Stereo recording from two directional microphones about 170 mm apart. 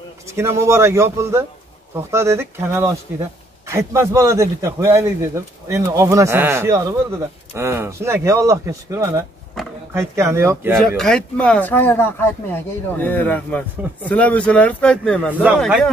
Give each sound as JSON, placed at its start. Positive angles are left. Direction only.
{"t": 0.3, "sound": "a man's voice", "side_deg": -15}
{"t": 9.6, "sound": "a sound", "side_deg": 0}
{"t": 9.9, "sound": "a man's voice", "side_deg": -15}
{"t": 11.0, "sound": "speech", "side_deg": 5}